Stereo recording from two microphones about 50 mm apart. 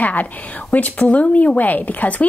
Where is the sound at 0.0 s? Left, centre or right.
Left.